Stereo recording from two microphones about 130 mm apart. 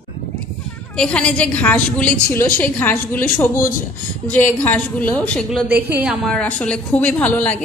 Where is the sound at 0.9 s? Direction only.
5° left (ahead or behind).